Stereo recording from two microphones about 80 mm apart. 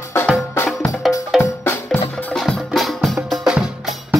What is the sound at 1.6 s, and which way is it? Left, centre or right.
Percussion, left.